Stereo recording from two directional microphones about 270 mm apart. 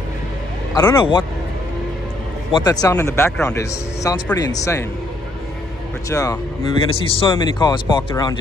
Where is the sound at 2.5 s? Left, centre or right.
Centre.